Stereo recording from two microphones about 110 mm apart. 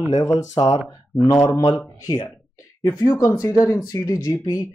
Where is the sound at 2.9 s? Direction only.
30° left (ahead or behind).